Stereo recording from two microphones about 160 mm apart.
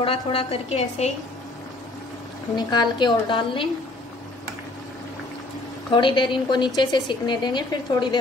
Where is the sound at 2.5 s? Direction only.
25° left (ahead or behind).